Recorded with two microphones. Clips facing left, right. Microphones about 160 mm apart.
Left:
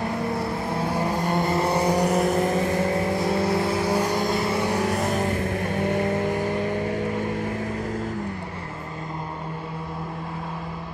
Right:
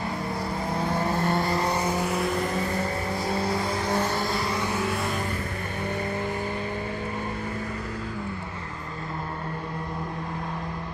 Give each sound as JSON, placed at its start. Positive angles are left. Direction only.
{"t": 0.7, "sound": "vehicle", "side_deg": 10}
{"t": 3.4, "sound": "vehicle", "side_deg": 5}
{"t": 4.7, "sound": "vehicle", "side_deg": 40}